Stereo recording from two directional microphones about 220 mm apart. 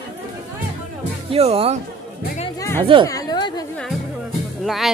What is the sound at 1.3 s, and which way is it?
Speech, 25° right (ahead or behind).